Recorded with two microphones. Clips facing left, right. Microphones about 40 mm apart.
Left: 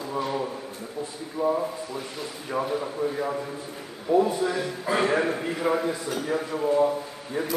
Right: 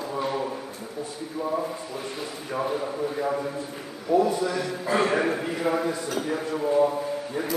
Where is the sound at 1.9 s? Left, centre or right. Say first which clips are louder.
Right 1 dB; centre.